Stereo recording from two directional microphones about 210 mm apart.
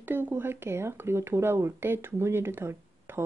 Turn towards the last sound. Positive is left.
turn(degrees=-10)  # may be behind; listen again after turning